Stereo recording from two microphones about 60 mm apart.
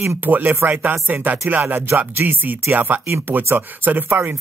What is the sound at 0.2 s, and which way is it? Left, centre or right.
Speech, right.